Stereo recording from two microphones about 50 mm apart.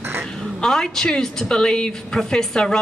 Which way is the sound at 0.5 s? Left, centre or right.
Centre.